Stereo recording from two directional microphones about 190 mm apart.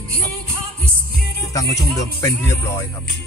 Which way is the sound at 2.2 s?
15° left (ahead or behind).